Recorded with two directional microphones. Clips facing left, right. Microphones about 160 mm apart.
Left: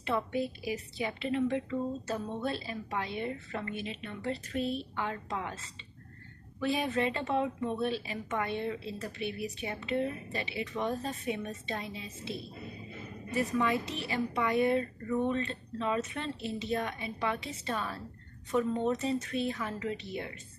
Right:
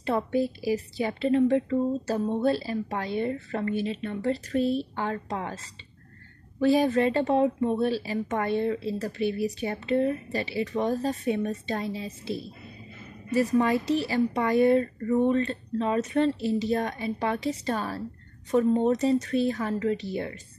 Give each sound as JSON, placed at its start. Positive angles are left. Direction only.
{"t": 0.0, "sound": "a woman's voice", "side_deg": -40}
{"t": 6.6, "sound": "a woman's voice", "side_deg": -40}